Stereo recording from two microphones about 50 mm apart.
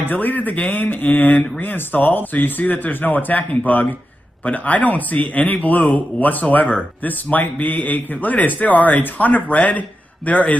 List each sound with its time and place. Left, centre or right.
0.1 s speech: left